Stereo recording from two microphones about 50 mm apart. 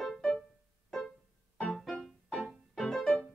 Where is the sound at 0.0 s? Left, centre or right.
Centre.